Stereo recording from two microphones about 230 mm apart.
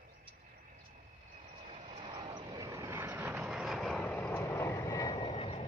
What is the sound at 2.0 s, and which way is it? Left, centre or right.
Vehicle, right.